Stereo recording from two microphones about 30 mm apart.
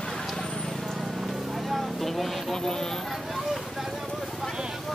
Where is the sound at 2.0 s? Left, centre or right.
Centre.